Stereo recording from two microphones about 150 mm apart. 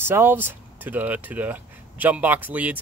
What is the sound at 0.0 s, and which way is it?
Speech, 15° right (ahead or behind).